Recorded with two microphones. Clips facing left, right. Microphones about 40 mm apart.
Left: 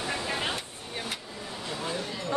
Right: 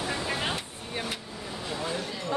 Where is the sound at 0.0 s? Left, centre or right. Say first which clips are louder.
Right 1 dB; centre.